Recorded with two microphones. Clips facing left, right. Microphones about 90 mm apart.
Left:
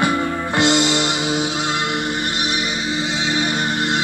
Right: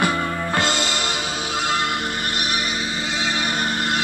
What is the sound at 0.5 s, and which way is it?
Music, 20° left (ahead or behind).